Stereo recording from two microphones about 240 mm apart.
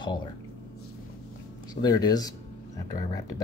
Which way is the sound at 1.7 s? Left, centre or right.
Centre.